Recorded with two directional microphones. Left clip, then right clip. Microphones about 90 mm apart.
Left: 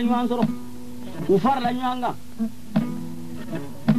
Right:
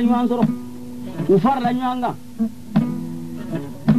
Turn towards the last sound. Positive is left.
turn(degrees=20)  # may be behind; listen again after turning